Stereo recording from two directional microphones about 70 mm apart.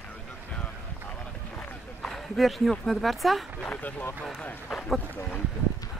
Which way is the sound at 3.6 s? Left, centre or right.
Left.